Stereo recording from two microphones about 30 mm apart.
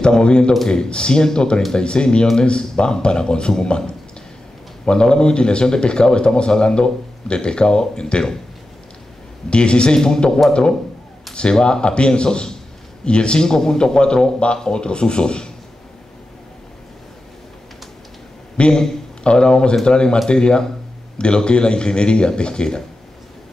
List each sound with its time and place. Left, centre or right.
0.2 s speech: left
9.5 s speech: left
13.5 s speech: left
18.6 s speech: left